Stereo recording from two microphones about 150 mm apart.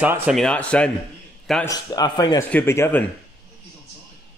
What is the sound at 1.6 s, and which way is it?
Speech, 25° left (ahead or behind).